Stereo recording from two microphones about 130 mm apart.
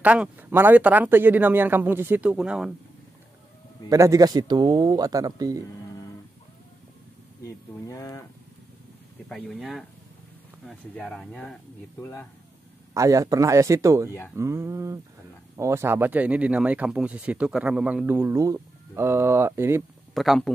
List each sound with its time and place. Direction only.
0.0 s speech: 10° right (ahead or behind)
3.9 s speech: 25° right (ahead or behind)
7.4 s speech: 25° left (ahead or behind)
9.3 s speech: centre (ahead or behind)
11.0 s speech: 5° left (ahead or behind)
12.0 s speech: 20° left (ahead or behind)
12.9 s speech: 25° right (ahead or behind)
20.2 s speech: centre (ahead or behind)